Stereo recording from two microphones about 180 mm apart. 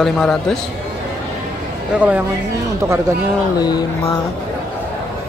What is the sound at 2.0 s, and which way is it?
Speech, 10° right (ahead or behind).